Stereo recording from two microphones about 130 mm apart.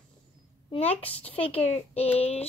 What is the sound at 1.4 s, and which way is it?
A child's voice, 50° left (ahead or behind).